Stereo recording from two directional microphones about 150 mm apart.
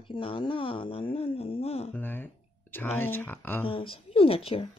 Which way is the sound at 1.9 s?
15° left (ahead or behind).